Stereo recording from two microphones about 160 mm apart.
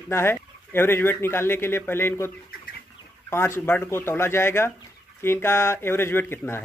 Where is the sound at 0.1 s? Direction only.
15° left (ahead or behind).